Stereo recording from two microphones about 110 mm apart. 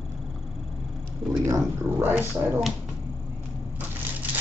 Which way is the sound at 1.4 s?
25° right (ahead or behind).